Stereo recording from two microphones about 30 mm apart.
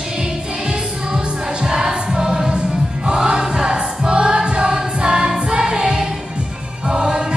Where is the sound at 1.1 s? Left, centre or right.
Right.